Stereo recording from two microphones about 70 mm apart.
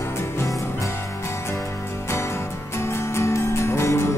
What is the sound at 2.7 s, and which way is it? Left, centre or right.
Music, left.